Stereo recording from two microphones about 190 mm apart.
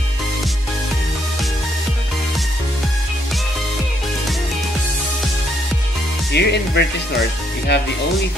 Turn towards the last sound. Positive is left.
turn(degrees=60)  # may be behind; listen again after turning